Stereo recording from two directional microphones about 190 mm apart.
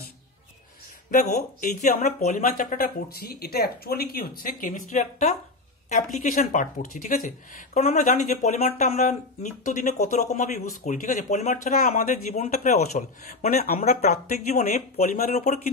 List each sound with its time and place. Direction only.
1.1 s speech: 40° left (ahead or behind)
13.5 s speech: 50° left (ahead or behind)
13.8 s speech: 40° left (ahead or behind)